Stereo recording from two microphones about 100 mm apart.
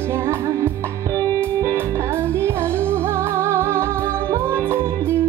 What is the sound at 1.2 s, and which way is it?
Music, 20° left (ahead or behind).